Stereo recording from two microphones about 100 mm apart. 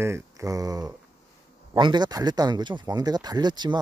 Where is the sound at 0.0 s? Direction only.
30° right (ahead or behind).